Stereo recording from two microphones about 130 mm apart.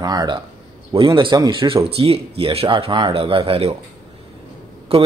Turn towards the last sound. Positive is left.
turn(degrees=-50)  # may be behind; listen again after turning